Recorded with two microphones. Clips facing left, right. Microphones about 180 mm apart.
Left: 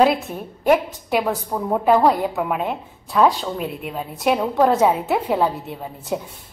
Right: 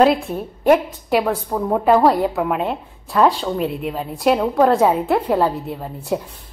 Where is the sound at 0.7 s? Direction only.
Centre (ahead or behind).